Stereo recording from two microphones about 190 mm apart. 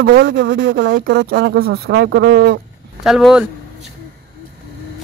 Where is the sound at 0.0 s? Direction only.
70° right (ahead or behind).